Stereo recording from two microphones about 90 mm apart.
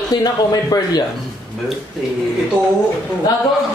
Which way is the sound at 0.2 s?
45° left (ahead or behind).